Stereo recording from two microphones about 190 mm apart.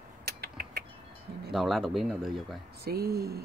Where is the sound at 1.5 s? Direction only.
Centre (ahead or behind).